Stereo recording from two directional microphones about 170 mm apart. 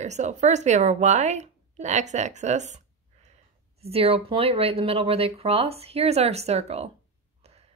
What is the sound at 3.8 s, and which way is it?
Speech, 35° right (ahead or behind).